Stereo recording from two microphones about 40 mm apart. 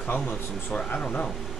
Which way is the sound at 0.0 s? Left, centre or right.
Left.